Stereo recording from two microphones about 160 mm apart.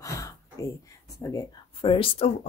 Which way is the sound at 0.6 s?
20° left (ahead or behind).